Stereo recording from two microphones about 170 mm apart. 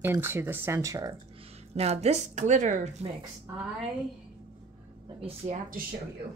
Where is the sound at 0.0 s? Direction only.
15° right (ahead or behind).